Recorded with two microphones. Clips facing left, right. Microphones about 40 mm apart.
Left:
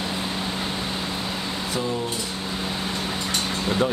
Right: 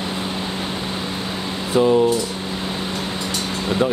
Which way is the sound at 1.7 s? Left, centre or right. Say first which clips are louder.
Right 14 dB; right.